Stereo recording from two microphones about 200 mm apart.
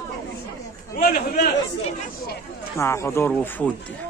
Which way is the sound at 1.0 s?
50° left (ahead or behind).